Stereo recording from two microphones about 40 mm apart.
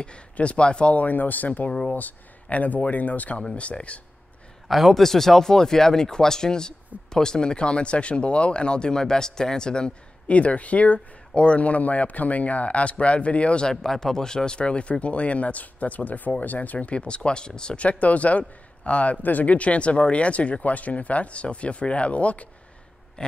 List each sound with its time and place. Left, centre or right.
0.0 s speech: left
0.9 s speech: left
3.5 s speech: left
4.6 s speech: centre; by 13.7 s left
13.8 s speech: centre; by 16.9 s left
16.9 s speech: left
17.8 s speech: left